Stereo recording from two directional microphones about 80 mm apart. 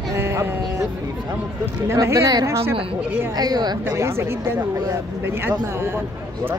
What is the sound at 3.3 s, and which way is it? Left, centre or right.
Speech, right.